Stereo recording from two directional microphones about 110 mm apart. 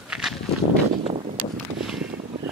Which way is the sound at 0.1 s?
10° right (ahead or behind).